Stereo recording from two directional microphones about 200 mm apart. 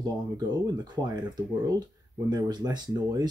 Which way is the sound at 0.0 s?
20° right (ahead or behind).